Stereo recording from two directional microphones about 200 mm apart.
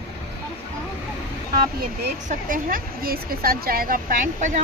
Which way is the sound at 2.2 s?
45° right (ahead or behind).